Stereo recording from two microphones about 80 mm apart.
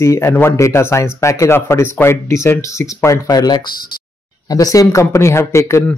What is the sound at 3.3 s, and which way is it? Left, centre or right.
Speech, left.